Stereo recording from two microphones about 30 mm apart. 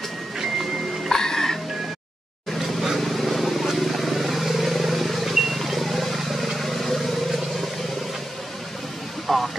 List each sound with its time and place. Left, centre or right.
1.1 s music: centre
2.5 s vehicle: centre
9.3 s a sound: centre